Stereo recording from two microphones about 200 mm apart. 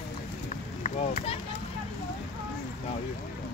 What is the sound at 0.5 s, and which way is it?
Run, 35° left (ahead or behind).